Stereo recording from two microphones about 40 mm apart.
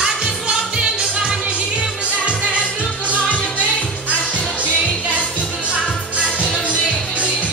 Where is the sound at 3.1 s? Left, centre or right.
Left.